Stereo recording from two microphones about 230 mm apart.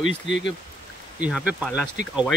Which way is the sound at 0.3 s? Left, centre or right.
Left.